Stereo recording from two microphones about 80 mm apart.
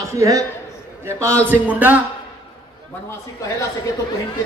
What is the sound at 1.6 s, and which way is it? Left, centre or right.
Speech, centre.